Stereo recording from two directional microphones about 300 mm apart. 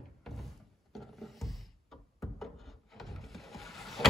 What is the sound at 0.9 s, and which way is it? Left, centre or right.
Mechanisms, centre.